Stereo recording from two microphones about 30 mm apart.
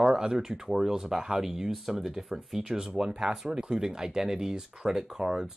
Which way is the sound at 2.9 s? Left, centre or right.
Right.